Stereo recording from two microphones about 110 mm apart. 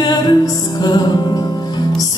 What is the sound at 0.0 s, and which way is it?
Music, 40° left (ahead or behind).